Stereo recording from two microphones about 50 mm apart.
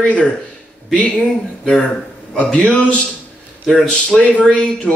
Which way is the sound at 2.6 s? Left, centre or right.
Centre.